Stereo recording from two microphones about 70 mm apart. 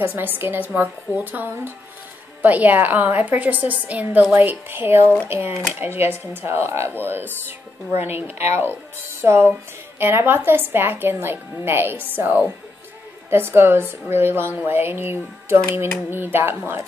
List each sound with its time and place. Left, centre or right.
0.0 s a woman's voice: right